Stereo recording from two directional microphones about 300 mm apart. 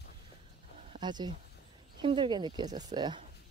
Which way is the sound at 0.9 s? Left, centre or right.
Centre.